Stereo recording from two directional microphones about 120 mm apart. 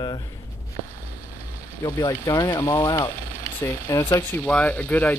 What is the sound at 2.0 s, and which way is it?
Speech, 35° left (ahead or behind).